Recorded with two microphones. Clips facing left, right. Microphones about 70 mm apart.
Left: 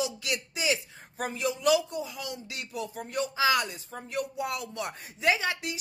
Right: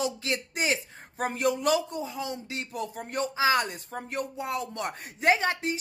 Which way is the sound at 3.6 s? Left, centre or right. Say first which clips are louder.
Right 4 dB; right.